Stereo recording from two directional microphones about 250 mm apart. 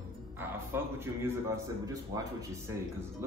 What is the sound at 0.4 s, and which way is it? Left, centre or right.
A man's voice, centre.